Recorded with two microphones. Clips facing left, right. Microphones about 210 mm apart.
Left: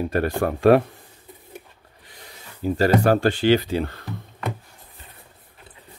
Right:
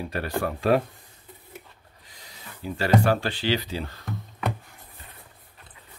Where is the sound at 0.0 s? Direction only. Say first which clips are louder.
Left 6 dB; 50° left (ahead or behind).